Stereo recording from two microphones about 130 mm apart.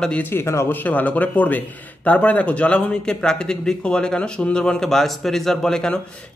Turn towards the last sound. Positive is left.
turn(degrees=5)  # may be behind; listen again after turning